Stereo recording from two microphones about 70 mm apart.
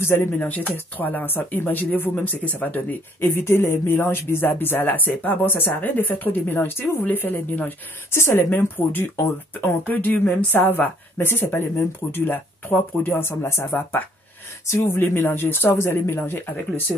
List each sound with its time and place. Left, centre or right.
0.0 s speech: left
0.7 s speech: left
9.1 s speech: left
9.8 s speech: left